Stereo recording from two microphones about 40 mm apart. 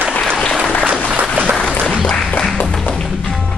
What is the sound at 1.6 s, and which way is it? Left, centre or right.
Applause, left.